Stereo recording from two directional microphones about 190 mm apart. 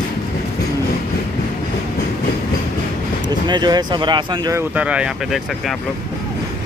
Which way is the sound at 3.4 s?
25° right (ahead or behind).